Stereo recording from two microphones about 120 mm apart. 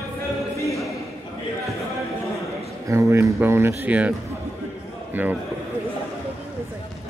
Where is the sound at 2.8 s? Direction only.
25° right (ahead or behind).